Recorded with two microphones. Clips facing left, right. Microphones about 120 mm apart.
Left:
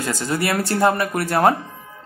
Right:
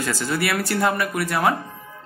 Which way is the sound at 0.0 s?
20° left (ahead or behind).